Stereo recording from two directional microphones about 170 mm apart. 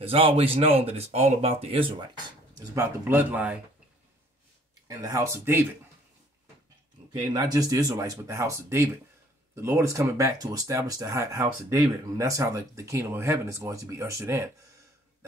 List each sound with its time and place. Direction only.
0.0 s speech: 35° right (ahead or behind)
2.6 s speech: 15° right (ahead or behind)
4.8 s speech: 20° right (ahead or behind)
7.1 s speech: 25° right (ahead or behind)